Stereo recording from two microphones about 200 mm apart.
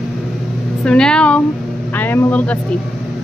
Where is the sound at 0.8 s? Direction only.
5° left (ahead or behind).